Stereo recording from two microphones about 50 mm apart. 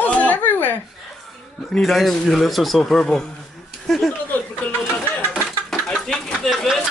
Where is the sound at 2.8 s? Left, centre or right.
Centre.